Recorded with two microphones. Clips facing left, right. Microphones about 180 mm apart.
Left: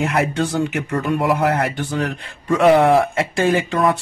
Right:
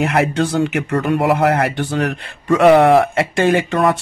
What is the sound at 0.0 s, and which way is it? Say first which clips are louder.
Speech: right 3 dB; 75° right (ahead or behind).